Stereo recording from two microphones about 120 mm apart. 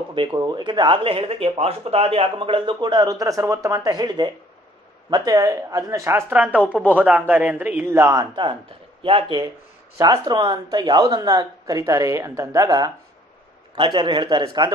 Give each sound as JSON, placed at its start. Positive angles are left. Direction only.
{"t": 0.1, "sound": "a man's voice", "side_deg": -40}
{"t": 8.0, "sound": "speech", "side_deg": -35}
{"t": 9.9, "sound": "speech", "side_deg": -30}
{"t": 13.7, "sound": "speech", "side_deg": -40}